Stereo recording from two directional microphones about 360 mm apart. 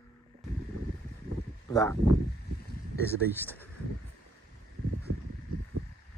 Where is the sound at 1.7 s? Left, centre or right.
Centre.